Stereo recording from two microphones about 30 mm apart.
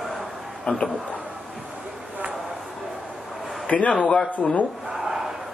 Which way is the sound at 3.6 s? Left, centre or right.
Left.